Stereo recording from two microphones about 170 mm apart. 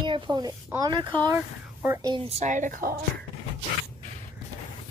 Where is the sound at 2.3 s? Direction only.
45° right (ahead or behind).